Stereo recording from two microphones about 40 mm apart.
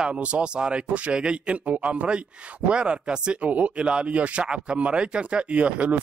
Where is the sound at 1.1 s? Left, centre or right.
Right.